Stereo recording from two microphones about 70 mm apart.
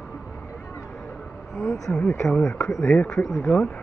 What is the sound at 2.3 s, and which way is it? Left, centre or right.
Speech, centre.